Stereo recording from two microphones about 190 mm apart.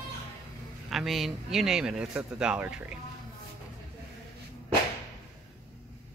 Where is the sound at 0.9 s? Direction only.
Centre (ahead or behind).